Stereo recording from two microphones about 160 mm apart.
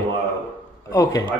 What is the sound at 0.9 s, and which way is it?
Speech, 20° left (ahead or behind).